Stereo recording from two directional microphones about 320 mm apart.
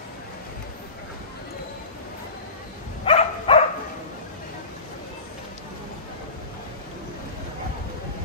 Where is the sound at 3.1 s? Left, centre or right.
Centre.